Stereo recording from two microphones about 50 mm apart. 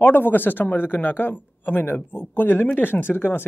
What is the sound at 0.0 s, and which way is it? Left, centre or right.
Speech, left.